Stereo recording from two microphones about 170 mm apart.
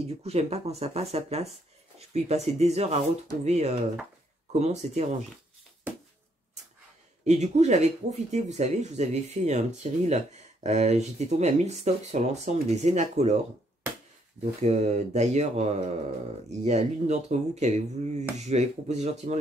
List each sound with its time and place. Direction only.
0.0 s speech: 35° right (ahead or behind)
7.2 s speech: 40° right (ahead or behind)
14.4 s speech: 40° right (ahead or behind)